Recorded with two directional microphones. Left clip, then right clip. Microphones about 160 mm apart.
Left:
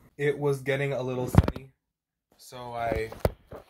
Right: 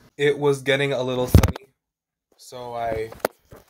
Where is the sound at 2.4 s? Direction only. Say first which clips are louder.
Right 4 dB; 35° right (ahead or behind).